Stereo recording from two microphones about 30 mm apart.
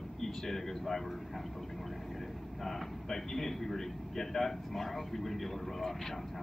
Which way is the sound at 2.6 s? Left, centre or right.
Centre.